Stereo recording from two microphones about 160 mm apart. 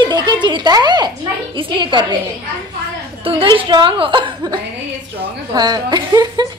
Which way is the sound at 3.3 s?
35° right (ahead or behind).